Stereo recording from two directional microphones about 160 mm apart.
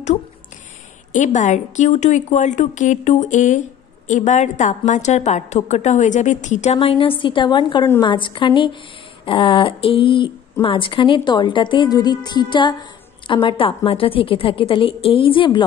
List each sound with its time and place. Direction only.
1.1 s a woman's voice: 50° left (ahead or behind); by 15.6 s 30° left (ahead or behind)